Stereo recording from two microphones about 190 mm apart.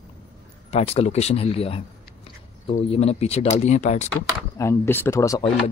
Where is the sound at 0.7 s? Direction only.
30° left (ahead or behind).